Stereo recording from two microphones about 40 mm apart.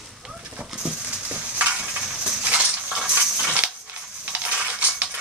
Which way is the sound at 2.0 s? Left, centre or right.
Centre.